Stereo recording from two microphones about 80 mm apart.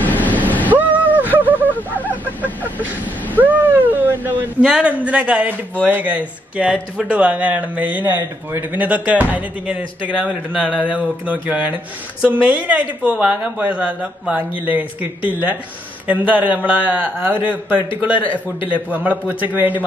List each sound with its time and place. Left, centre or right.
0.0 s vehicle: left
0.7 s a sound: right
1.7 s wheeze: left
3.3 s a man's voice: right